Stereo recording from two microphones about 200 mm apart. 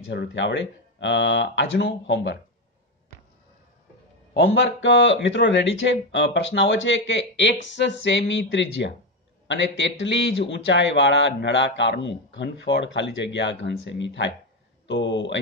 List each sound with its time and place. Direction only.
0.0 s speech: 65° left (ahead or behind)
4.5 s speech: 75° left (ahead or behind)